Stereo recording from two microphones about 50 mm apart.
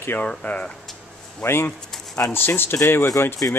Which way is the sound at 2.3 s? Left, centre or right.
Left.